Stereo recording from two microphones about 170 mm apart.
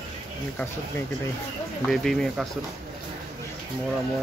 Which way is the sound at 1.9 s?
Centre (ahead or behind).